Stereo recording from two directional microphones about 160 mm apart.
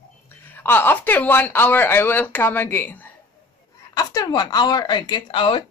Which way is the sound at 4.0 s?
25° left (ahead or behind).